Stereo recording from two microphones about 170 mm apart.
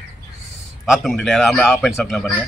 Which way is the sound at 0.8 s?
Centre (ahead or behind).